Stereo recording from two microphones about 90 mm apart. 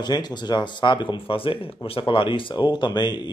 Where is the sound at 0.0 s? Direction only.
55° left (ahead or behind).